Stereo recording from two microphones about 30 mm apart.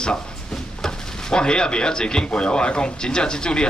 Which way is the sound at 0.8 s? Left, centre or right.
Left.